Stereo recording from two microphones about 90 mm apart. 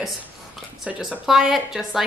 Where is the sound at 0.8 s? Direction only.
15° right (ahead or behind).